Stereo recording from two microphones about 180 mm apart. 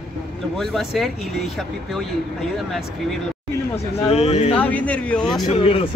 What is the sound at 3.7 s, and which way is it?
Speech, 35° left (ahead or behind).